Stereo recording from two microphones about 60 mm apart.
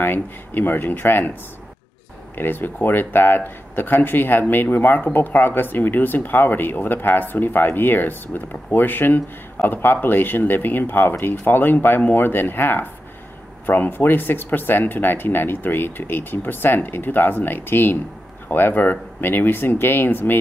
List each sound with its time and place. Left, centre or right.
0.0 s speech: left
2.3 s speech: left